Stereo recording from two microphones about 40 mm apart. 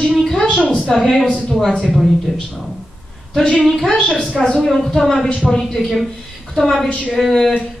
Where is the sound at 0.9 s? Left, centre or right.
Centre.